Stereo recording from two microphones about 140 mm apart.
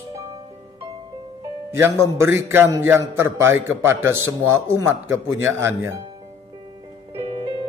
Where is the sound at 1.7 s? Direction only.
15° right (ahead or behind).